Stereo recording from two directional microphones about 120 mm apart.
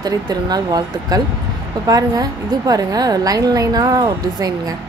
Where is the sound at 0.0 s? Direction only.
35° right (ahead or behind).